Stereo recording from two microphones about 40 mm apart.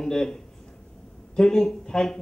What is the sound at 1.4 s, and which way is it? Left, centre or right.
Speech, centre.